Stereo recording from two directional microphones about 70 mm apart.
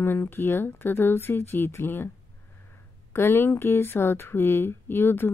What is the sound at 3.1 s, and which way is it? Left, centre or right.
Speech, left.